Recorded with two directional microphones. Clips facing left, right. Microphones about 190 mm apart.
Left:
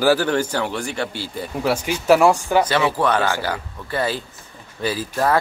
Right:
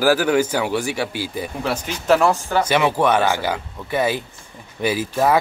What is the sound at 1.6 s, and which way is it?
Speech, 10° left (ahead or behind).